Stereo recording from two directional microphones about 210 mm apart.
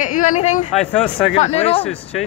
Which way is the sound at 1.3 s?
30° left (ahead or behind).